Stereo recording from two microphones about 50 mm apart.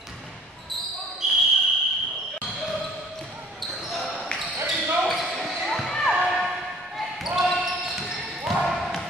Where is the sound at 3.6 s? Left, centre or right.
Centre.